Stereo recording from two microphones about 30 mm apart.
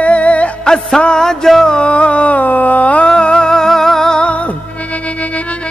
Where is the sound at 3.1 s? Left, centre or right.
Left.